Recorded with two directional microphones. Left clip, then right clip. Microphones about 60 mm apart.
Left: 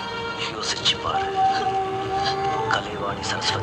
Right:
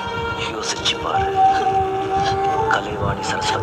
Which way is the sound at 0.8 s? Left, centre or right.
Right.